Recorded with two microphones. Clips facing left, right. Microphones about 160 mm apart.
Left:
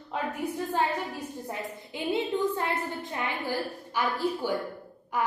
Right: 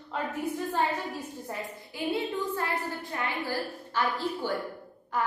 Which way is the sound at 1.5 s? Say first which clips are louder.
Left 1 dB; 20° left (ahead or behind).